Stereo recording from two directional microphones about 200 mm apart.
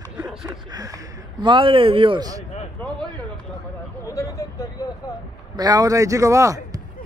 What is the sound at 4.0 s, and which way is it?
Vehicle, 15° left (ahead or behind).